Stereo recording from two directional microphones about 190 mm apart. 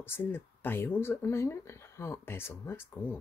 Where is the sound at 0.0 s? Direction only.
10° left (ahead or behind).